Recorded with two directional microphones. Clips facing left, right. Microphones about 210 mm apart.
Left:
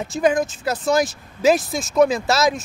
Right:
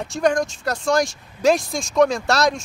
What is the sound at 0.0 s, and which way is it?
Speech, 5° left (ahead or behind).